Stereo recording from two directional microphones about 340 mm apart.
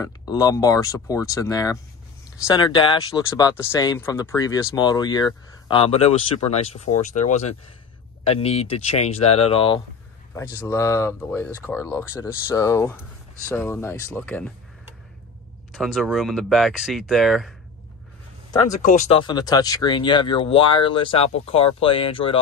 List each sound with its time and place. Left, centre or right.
0.0 s speech: centre
15.7 s speech: centre
18.5 s speech: centre